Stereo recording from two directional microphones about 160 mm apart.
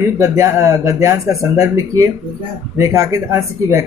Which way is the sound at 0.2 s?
15° right (ahead or behind).